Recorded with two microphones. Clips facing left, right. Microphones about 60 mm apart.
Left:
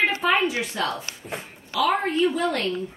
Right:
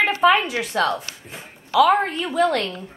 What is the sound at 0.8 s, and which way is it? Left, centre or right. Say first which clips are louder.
A woman's voice: right 6 dB; right.